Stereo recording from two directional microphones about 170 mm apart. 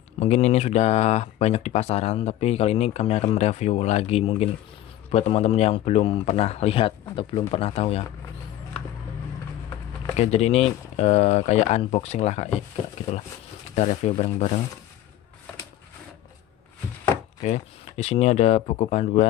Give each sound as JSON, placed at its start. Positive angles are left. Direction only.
{"t": 0.2, "sound": "speech", "side_deg": 40}
{"t": 10.1, "sound": "speech", "side_deg": 40}
{"t": 13.7, "sound": "speech", "side_deg": 45}
{"t": 17.4, "sound": "speech", "side_deg": 40}